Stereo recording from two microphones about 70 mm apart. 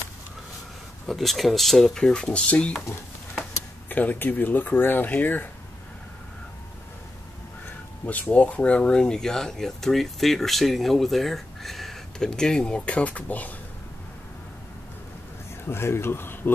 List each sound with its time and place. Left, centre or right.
1.0 s speech: centre
3.9 s speech: left
8.0 s speech: left
15.6 s speech: left